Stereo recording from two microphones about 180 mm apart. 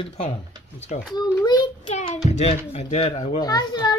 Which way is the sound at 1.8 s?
35° left (ahead or behind).